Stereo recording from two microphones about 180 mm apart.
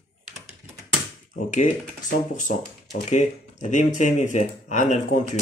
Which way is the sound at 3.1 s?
40° left (ahead or behind).